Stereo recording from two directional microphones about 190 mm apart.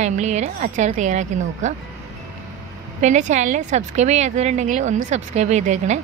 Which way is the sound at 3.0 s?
40° right (ahead or behind).